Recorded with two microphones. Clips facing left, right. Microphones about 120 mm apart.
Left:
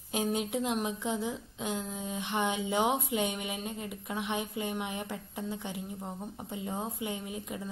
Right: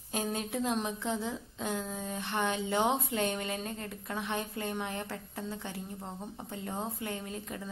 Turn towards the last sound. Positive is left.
turn(degrees=15)  # may be behind; listen again after turning